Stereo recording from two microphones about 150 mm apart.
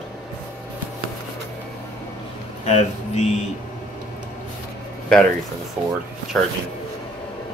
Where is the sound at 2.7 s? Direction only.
50° left (ahead or behind).